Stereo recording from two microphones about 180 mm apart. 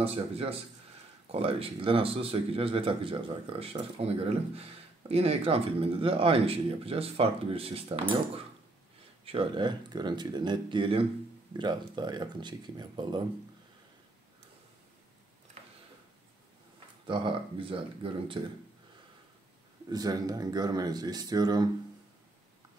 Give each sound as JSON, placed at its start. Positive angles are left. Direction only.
{"t": 0.0, "sound": "speech", "side_deg": -35}
{"t": 9.2, "sound": "speech", "side_deg": -30}
{"t": 17.0, "sound": "speech", "side_deg": -25}
{"t": 19.9, "sound": "speech", "side_deg": -20}